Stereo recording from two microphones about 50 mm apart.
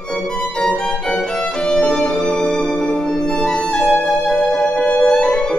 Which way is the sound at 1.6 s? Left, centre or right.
Left.